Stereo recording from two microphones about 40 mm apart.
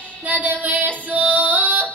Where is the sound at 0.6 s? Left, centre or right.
Right.